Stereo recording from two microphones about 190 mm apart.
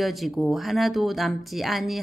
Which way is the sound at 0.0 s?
Centre (ahead or behind).